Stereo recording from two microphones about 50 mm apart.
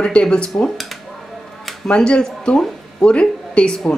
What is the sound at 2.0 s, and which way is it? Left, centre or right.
A woman's voice, centre.